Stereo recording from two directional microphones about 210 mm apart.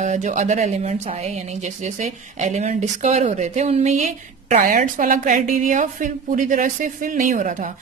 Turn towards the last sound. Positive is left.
turn(degrees=-35)  # may be behind; listen again after turning